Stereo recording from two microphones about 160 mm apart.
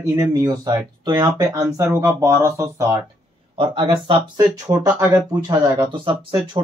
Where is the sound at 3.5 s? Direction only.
35° right (ahead or behind).